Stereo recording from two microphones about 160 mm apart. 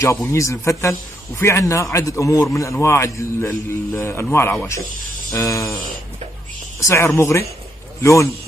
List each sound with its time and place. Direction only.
0.3 s a man's voice: 20° left (ahead or behind)
6.8 s a man's voice: 15° left (ahead or behind)